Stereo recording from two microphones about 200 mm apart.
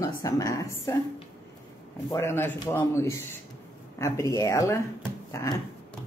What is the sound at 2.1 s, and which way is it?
Speech, 10° left (ahead or behind).